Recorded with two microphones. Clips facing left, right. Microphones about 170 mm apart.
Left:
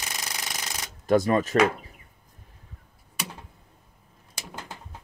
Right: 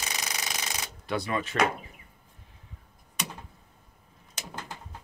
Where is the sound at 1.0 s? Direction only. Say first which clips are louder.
Left 10 dB; 45° left (ahead or behind).